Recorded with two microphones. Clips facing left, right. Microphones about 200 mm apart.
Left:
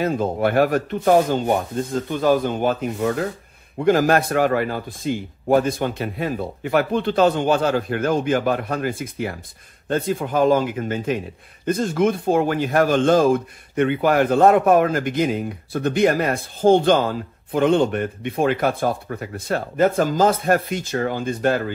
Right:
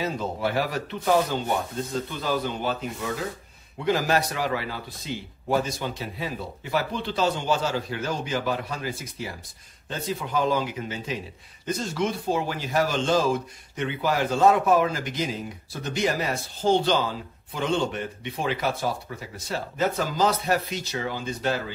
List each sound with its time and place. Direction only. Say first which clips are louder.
0.0 s a man's voice: left 7 dB; 55° left (ahead or behind)